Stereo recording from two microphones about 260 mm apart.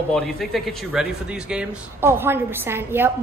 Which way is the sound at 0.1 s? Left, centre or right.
Centre.